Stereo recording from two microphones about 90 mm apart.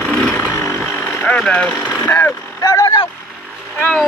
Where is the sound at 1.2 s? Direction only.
15° left (ahead or behind).